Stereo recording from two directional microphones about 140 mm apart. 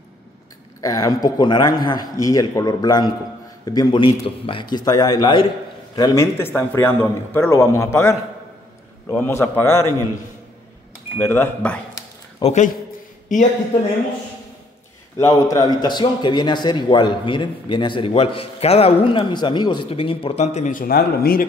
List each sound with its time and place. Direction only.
0.7 s a man's voice: 25° left (ahead or behind)
6.3 s a man's voice: 15° left (ahead or behind)
11.1 s a man's voice: 15° left (ahead or behind)
12.4 s speech: 50° left (ahead or behind)
13.3 s speech: 65° left (ahead or behind)
15.1 s a man's voice: 20° left (ahead or behind); by 20.4 s 40° left (ahead or behind)
20.4 s speech: 60° left (ahead or behind); by 21.5 s 90° left